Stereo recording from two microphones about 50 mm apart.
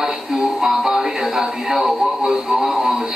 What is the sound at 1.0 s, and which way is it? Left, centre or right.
Speech, right.